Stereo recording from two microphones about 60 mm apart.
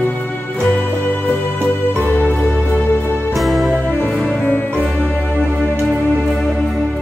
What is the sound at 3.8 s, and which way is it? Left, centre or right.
Music, left.